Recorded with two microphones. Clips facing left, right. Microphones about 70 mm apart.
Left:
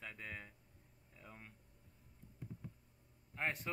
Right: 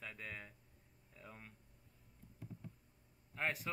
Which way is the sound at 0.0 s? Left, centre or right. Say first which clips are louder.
Even; centre.